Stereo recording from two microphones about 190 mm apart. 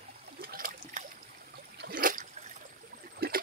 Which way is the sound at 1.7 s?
50° right (ahead or behind).